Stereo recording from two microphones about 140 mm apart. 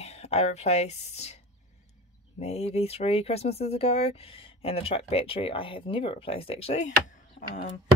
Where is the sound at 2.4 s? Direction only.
50° left (ahead or behind).